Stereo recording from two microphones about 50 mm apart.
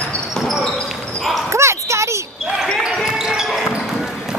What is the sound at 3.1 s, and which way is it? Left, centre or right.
Basketball bounce, centre.